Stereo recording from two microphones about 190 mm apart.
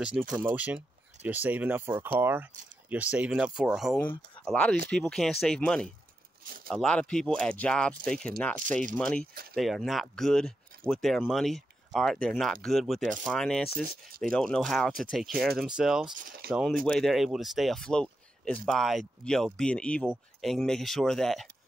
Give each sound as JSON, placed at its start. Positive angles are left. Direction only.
{"t": 0.3, "sound": "speech", "side_deg": -10}
{"t": 9.3, "sound": "speech", "side_deg": -55}
{"t": 9.6, "sound": "speech", "side_deg": 0}
{"t": 13.8, "sound": "speech", "side_deg": -55}
{"t": 14.3, "sound": "speech", "side_deg": 5}
{"t": 16.2, "sound": "speech", "side_deg": -45}
{"t": 16.4, "sound": "speech", "side_deg": 0}